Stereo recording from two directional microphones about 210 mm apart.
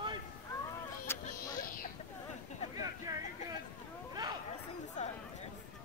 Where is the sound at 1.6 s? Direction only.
40° left (ahead or behind).